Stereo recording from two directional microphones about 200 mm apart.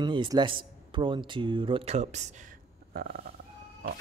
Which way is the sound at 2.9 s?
50° right (ahead or behind).